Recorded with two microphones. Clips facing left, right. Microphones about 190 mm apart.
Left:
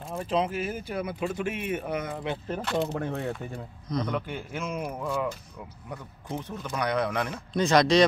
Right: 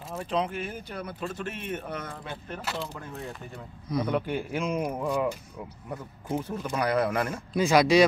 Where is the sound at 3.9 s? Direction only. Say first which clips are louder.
Right 3 dB; 10° right (ahead or behind).